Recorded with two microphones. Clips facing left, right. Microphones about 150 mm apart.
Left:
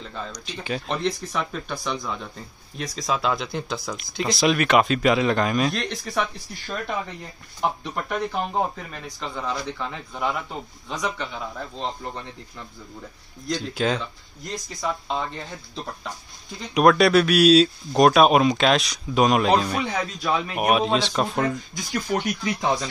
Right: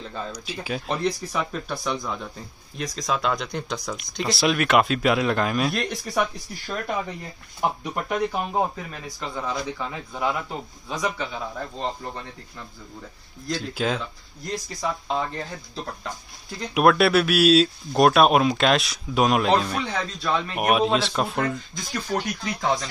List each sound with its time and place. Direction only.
0.1 s speech: 5° right (ahead or behind)
7.8 s speech: 5° right (ahead or behind); by 20.5 s 10° left (ahead or behind)
20.5 s speech: centre (ahead or behind)